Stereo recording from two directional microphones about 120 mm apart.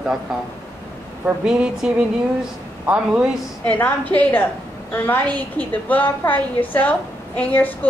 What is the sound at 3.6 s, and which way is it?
A woman's voice, 15° left (ahead or behind).